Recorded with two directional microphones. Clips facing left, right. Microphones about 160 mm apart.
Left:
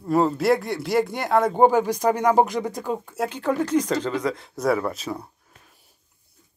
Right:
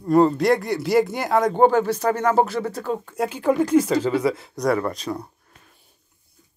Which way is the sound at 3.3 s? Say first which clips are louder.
Right 5 dB; 10° right (ahead or behind).